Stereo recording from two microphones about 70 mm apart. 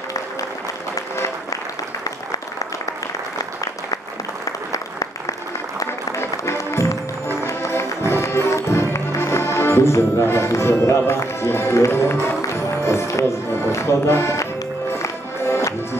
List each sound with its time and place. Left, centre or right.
6.5 s music: left